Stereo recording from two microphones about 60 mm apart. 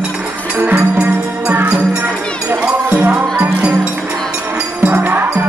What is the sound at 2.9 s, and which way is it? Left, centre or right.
Music, right.